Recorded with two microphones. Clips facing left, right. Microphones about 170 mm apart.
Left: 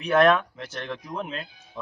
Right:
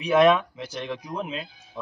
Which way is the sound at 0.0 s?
Centre (ahead or behind).